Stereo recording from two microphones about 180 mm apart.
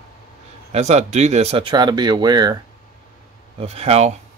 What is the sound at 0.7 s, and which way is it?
Speech, 40° right (ahead or behind).